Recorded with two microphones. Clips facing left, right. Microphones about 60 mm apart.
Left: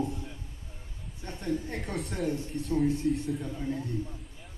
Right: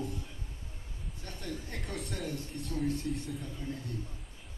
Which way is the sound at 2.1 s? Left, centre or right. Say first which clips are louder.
Left 8 dB; centre.